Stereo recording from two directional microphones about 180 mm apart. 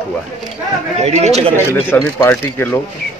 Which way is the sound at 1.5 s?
15° left (ahead or behind).